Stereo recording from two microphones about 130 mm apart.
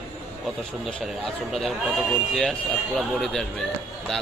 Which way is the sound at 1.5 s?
Centre (ahead or behind).